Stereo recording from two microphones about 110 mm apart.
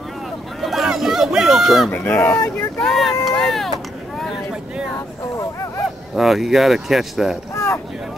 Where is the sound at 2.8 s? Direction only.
Centre (ahead or behind).